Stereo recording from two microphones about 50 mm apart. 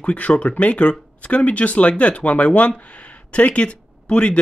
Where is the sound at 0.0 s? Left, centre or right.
Left.